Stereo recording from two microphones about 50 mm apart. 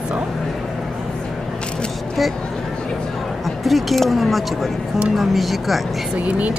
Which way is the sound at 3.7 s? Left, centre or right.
Centre.